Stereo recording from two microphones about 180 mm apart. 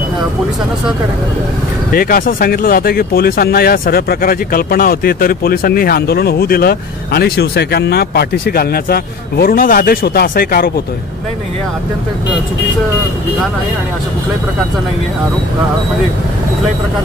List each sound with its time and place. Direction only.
1.9 s speech: 55° left (ahead or behind)